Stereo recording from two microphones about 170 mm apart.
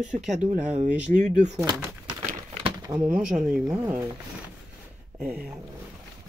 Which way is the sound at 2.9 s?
10° right (ahead or behind).